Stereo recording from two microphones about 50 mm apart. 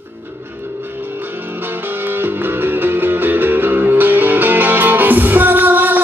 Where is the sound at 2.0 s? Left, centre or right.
Right.